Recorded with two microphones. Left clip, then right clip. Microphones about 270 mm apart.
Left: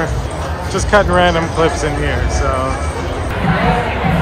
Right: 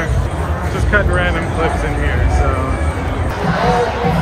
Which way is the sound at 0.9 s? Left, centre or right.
Centre.